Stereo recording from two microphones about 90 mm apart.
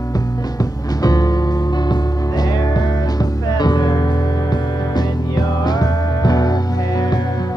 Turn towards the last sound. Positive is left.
turn(degrees=50)  # may be behind; listen again after turning